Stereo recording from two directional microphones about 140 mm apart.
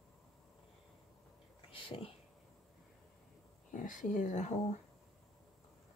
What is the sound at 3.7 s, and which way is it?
Speech, 65° left (ahead or behind).